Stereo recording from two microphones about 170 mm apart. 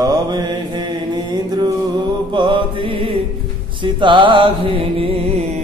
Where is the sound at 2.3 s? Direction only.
30° right (ahead or behind).